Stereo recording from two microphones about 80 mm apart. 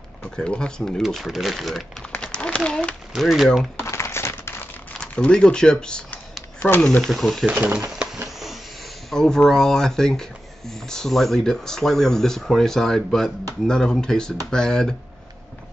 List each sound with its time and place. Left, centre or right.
0.2 s speech: centre
1.0 s speech: centre
2.2 s a sound: centre
3.2 s speech: centre
3.8 s a sound: left
5.0 s speech: centre
7.1 s speech: centre
7.4 s speech: right
9.1 s speech: centre